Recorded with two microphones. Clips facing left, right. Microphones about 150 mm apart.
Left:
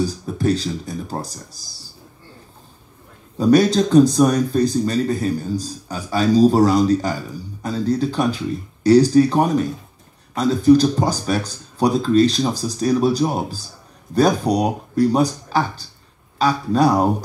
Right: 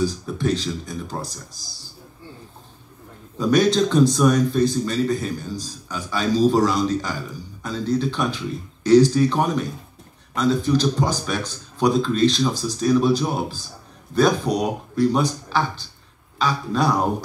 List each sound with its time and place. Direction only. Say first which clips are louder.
0.0 s speech: left 2 dB; 40° left (ahead or behind)
3.3 s speech: left 3 dB; 40° left (ahead or behind)
16.3 s speech: left 5 dB; 40° left (ahead or behind)